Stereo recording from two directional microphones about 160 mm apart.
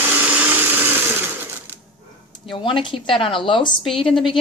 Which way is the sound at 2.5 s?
30° left (ahead or behind).